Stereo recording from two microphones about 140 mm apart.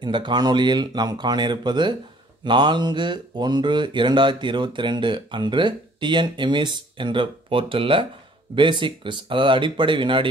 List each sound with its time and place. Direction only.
0.0 s speech: 35° right (ahead or behind)